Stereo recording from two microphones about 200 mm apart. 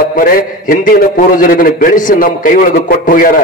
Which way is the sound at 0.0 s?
45° left (ahead or behind).